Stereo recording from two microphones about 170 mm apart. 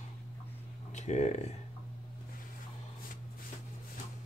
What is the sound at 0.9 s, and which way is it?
Speech, 45° left (ahead or behind).